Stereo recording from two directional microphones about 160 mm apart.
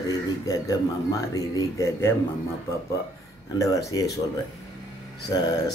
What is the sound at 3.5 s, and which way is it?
Speech, 20° left (ahead or behind).